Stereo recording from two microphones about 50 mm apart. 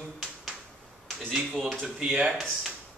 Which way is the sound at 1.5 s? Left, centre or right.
Centre.